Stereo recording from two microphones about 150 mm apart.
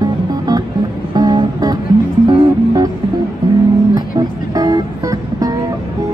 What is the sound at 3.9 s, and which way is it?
Music, 25° right (ahead or behind).